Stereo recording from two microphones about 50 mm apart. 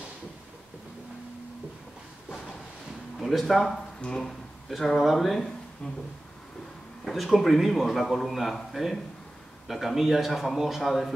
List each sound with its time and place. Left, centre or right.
3.2 s speech: centre
4.0 s speech: centre
4.3 s speech: centre
7.1 s a man's voice: centre
9.7 s a man's voice: centre